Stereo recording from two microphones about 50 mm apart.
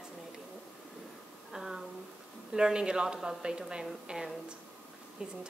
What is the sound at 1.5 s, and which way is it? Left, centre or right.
A woman's voice, centre.